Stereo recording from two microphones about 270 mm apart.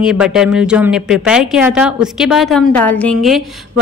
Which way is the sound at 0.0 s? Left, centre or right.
Centre.